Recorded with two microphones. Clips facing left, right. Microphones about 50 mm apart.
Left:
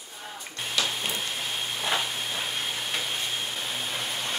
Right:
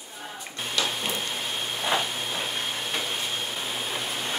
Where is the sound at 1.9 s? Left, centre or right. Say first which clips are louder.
Right 3 dB; centre.